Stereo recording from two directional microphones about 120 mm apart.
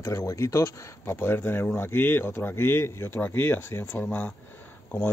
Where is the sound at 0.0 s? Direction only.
25° left (ahead or behind).